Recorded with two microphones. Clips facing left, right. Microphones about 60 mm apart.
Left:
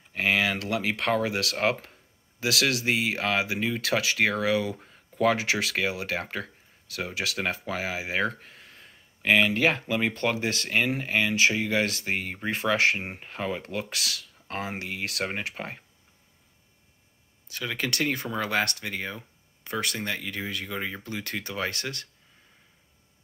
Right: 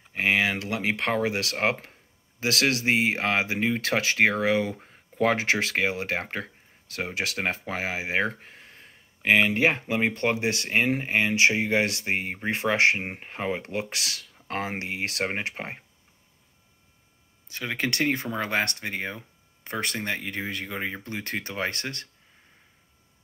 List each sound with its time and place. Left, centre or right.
0.1 s speech: right
14.5 s speech: right
14.9 s speech: right
17.5 s speech: right